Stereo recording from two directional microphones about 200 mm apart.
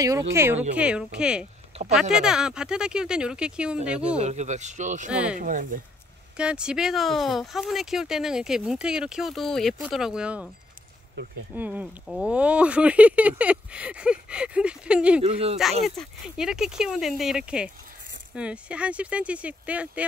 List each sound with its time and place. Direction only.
0.3 s speech: 10° right (ahead or behind)
4.2 s speech: 35° right (ahead or behind)
5.1 s speech: 5° right (ahead or behind)
5.4 s speech: 40° right (ahead or behind)
6.3 s speech: 5° right (ahead or behind)
11.5 s speech: 10° right (ahead or behind)
15.2 s speech: 30° right (ahead or behind)
15.5 s speech: centre (ahead or behind)